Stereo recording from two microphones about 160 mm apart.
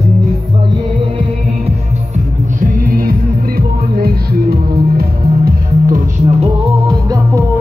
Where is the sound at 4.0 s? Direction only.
70° right (ahead or behind).